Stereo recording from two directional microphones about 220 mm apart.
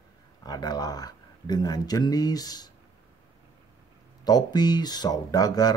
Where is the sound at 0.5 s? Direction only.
20° left (ahead or behind).